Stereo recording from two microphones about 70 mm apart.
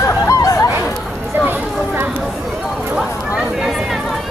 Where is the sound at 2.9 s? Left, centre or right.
Centre.